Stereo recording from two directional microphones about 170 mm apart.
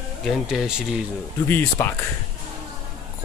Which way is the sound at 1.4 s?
15° left (ahead or behind).